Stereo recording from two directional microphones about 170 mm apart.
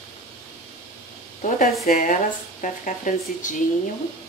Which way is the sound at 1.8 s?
50° left (ahead or behind).